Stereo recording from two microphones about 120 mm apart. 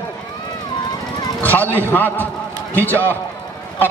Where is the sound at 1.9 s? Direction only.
15° left (ahead or behind).